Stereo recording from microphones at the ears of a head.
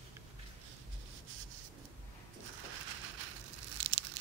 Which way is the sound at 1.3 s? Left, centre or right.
Right.